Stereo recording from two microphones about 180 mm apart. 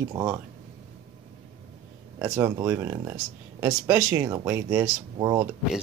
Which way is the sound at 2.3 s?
20° right (ahead or behind).